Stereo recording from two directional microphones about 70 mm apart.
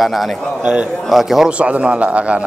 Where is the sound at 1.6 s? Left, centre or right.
Centre.